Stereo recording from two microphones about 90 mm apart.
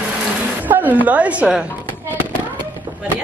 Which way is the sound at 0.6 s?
20° right (ahead or behind).